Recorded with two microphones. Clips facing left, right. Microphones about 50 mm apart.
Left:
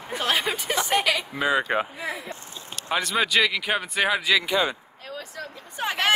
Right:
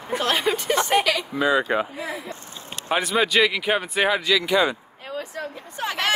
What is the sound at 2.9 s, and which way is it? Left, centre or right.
Speech, centre.